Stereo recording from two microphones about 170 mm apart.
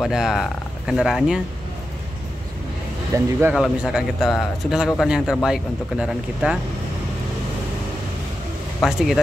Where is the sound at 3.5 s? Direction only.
Centre (ahead or behind).